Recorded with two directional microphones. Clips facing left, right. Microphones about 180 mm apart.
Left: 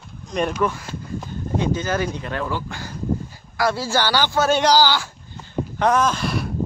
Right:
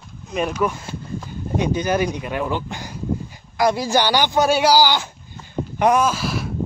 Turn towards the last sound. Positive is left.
turn(degrees=0)  # may be behind; listen again after turning